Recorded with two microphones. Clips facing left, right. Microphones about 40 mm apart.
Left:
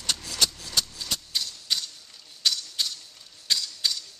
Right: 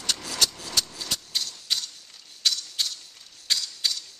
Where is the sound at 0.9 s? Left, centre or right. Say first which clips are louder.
Even; centre.